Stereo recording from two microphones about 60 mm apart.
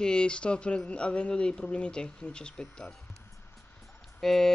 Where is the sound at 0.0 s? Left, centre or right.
Centre.